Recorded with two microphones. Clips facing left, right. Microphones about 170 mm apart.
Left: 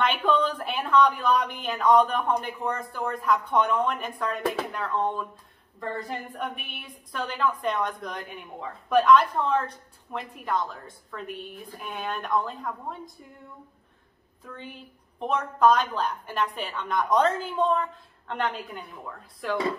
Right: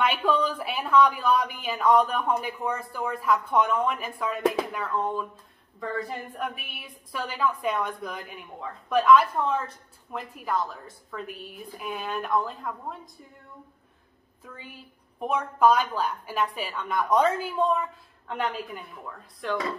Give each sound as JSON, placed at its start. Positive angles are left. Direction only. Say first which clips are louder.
{"t": 0.0, "sound": "a woman's voice", "louder": "even", "side_deg": -5}
{"t": 14.4, "sound": "speech", "louder": "left 3 dB", "side_deg": -5}